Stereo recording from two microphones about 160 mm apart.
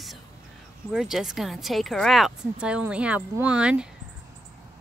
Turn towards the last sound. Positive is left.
turn(degrees=-5)  # may be behind; listen again after turning